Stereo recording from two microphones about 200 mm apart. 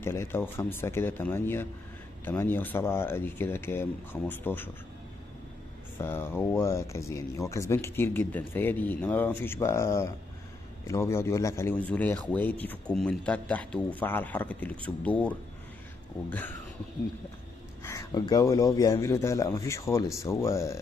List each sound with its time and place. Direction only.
0.0 s a man's voice: 10° left (ahead or behind)
5.9 s a man's voice: 10° left (ahead or behind)
17.8 s a man's voice: 20° left (ahead or behind)